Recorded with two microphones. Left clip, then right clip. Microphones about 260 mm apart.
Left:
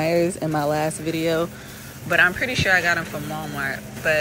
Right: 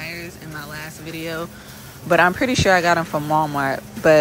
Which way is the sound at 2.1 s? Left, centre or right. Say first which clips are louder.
Right 2 dB; right.